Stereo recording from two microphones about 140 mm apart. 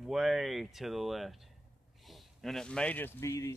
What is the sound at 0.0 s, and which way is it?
Speech, 5° right (ahead or behind).